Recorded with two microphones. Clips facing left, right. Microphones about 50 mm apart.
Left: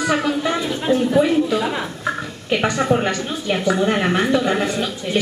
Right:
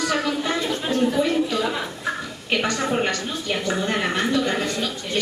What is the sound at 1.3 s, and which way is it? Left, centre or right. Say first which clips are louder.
A woman's voice: left 4 dB; centre.